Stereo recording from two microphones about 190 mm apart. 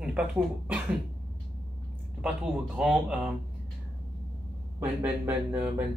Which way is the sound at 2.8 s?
5° right (ahead or behind).